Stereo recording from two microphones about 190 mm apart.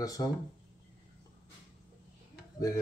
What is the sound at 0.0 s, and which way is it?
Speech, 20° left (ahead or behind).